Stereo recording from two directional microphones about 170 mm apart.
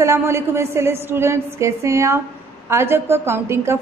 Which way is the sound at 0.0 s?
15° right (ahead or behind).